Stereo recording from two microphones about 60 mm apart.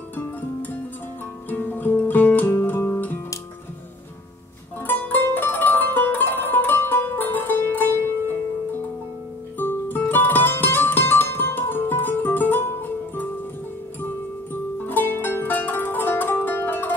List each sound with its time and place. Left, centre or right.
0.1 s music: left
4.8 s music: left
9.6 s music: left
14.5 s zither: left